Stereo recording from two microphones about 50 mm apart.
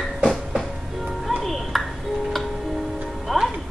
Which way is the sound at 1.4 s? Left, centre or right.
Centre.